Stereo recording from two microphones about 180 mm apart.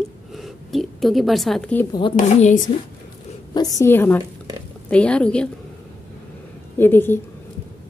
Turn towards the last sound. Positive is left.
turn(degrees=10)  # may be behind; listen again after turning